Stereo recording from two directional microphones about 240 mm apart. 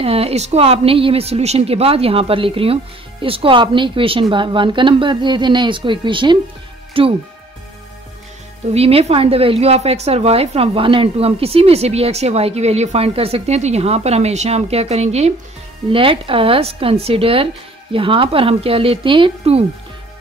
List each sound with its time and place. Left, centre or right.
0.0 s a woman's voice: right
8.7 s a woman's voice: right